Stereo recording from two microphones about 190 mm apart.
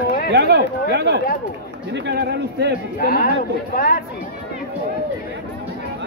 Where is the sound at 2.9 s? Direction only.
50° left (ahead or behind).